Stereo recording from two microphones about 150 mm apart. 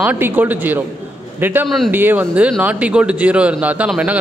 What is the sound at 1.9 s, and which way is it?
Speech, 10° right (ahead or behind).